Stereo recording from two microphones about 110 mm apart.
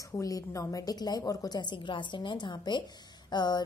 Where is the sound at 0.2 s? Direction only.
30° left (ahead or behind).